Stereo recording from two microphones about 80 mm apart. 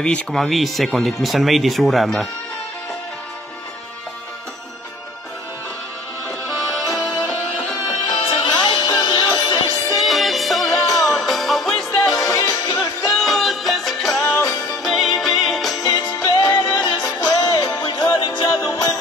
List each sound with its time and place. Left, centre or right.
0.0 s speech: centre
6.4 s music: centre
8.1 s music: left
9.9 s music: centre
12.3 s music: left
13.1 s music: centre
14.2 s music: left
14.8 s music: centre
16.2 s music: left
17.2 s music: left
17.8 s music: left